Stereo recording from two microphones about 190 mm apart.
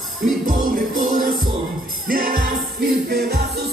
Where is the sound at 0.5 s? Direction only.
45° right (ahead or behind).